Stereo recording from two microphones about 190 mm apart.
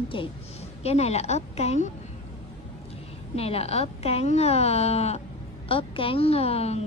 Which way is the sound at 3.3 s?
30° left (ahead or behind).